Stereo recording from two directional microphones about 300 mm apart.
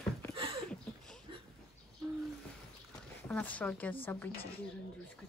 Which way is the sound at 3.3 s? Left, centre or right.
Centre.